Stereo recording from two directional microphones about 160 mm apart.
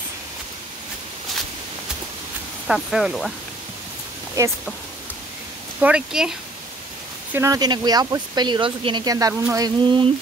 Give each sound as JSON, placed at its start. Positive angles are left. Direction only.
{"t": 2.7, "sound": "speech", "side_deg": -5}
{"t": 4.4, "sound": "speech", "side_deg": -15}
{"t": 5.8, "sound": "speech", "side_deg": -5}
{"t": 7.3, "sound": "speech", "side_deg": -20}